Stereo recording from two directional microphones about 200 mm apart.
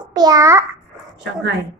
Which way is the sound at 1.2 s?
60° right (ahead or behind).